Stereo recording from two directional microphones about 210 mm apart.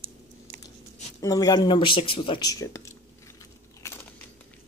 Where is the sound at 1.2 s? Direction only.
15° left (ahead or behind).